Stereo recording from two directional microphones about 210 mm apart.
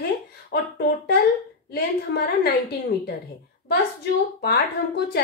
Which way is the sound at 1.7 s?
50° left (ahead or behind).